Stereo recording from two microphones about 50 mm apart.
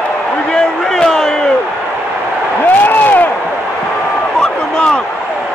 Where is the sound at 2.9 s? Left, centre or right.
Left.